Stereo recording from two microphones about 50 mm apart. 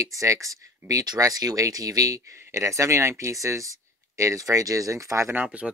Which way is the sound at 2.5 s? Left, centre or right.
Right.